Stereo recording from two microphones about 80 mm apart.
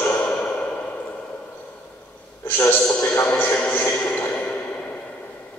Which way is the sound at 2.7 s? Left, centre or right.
Centre.